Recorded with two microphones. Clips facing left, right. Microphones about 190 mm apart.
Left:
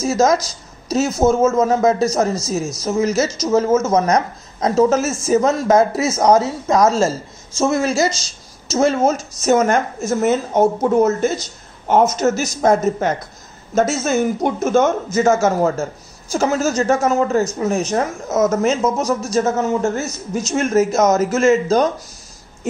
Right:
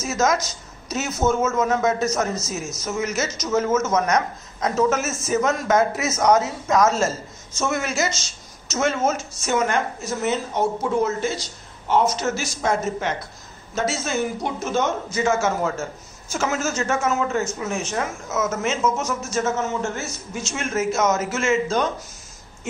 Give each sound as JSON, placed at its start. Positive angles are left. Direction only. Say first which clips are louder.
{"t": 0.0, "sound": "a man's voice", "louder": "left 6 dB", "side_deg": 35}